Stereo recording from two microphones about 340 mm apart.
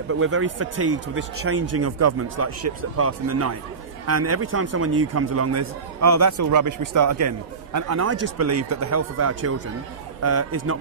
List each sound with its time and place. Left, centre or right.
0.1 s a man's voice: right